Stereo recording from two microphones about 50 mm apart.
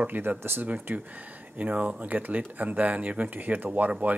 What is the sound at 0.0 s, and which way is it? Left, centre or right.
Speech, right.